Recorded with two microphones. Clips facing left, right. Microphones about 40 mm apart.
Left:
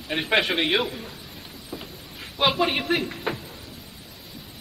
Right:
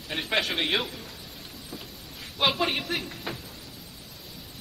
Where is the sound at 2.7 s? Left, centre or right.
Left.